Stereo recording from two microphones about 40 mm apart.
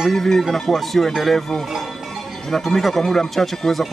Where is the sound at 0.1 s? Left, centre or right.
Centre.